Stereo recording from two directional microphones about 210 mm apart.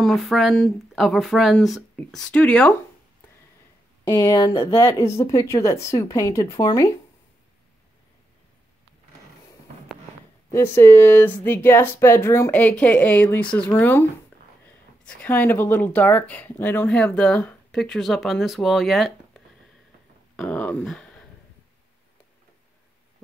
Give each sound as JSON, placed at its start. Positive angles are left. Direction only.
{"t": 0.0, "sound": "speech", "side_deg": 0}
{"t": 4.0, "sound": "speech", "side_deg": 15}
{"t": 10.5, "sound": "speech", "side_deg": 10}
{"t": 15.0, "sound": "speech", "side_deg": 10}